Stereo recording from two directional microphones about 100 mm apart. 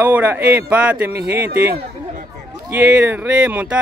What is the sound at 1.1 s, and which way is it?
Speech, 25° right (ahead or behind).